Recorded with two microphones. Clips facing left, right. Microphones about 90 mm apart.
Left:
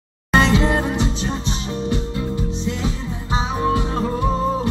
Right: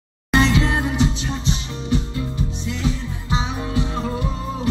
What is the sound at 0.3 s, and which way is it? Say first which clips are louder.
Music: left 2 dB; 35° left (ahead or behind).